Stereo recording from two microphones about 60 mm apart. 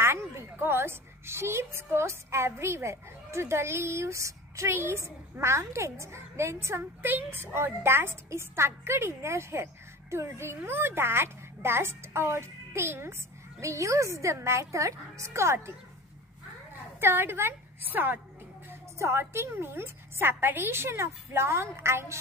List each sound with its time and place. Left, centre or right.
0.0 s a woman's voice: right
4.7 s a child's voice: right
13.6 s a woman's voice: right
17.0 s a woman's voice: right
18.9 s a child's voice: right